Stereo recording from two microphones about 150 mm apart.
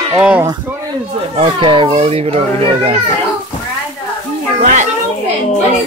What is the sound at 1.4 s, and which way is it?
A child's voice, 35° right (ahead or behind).